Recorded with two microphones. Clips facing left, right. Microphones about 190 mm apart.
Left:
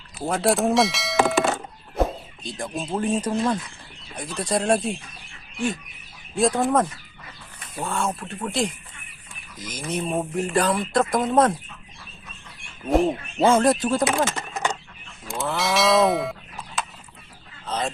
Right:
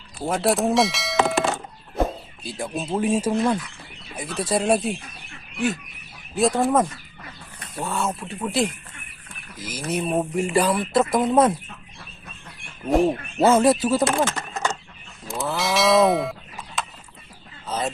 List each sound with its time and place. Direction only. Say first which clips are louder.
0.2 s speech: even; centre (ahead or behind)
6.3 s speech: right 1 dB; centre (ahead or behind)
12.9 s speech: right 1 dB; 5° right (ahead or behind)
14.2 s a sound: right 1 dB; 15° left (ahead or behind)
15.2 s a sound: even; centre (ahead or behind)
17.6 s fowl: right 1 dB; 5° right (ahead or behind)